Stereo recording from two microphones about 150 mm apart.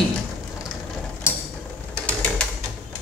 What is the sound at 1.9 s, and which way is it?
Ratchet, 5° left (ahead or behind).